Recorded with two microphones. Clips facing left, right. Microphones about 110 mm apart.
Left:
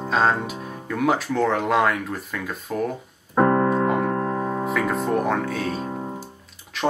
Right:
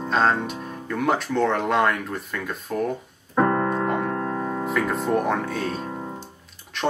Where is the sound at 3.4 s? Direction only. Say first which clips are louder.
Left 3 dB; 20° left (ahead or behind).